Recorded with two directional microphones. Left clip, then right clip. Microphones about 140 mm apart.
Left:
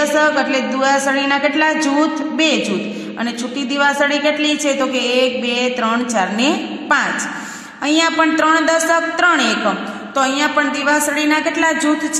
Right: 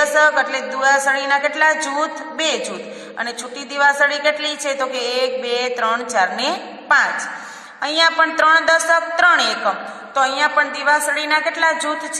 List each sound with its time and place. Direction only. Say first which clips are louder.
0.0 s a man's voice: even; 20° left (ahead or behind)
3.7 s a woman's voice: even; 15° left (ahead or behind)